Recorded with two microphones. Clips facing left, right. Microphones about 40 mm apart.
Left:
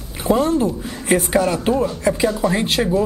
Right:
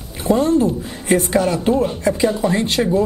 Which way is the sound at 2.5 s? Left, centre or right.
Centre.